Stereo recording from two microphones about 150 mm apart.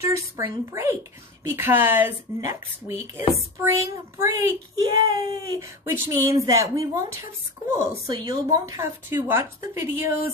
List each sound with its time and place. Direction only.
0.0 s speech: 20° right (ahead or behind)